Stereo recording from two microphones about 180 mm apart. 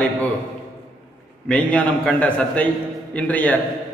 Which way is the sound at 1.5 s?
10° left (ahead or behind).